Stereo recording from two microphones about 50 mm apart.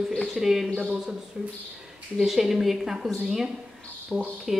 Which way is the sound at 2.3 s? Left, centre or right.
Centre.